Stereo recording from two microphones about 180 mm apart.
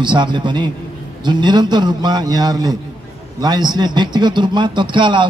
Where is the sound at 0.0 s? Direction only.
25° right (ahead or behind).